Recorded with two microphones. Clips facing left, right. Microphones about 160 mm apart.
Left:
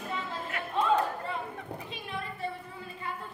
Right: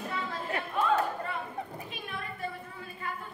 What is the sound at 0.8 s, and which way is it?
Chatter, 25° left (ahead or behind).